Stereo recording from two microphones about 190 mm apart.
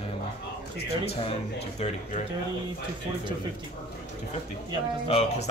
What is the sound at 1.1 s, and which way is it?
Speech, 35° left (ahead or behind).